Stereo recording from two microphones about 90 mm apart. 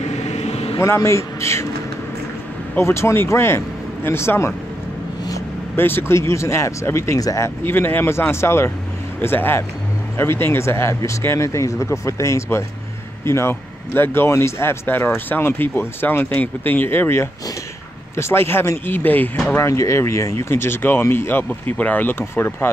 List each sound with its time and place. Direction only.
0.7 s speech: 30° left (ahead or behind)
2.8 s speech: 30° left (ahead or behind)
5.8 s speech: 25° left (ahead or behind)
19.5 s speech: 35° left (ahead or behind)